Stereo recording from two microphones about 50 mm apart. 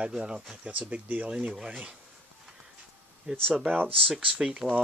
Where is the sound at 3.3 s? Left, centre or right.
Right.